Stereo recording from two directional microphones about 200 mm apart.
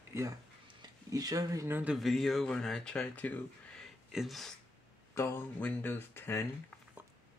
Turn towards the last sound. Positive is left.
turn(degrees=10)  # may be behind; listen again after turning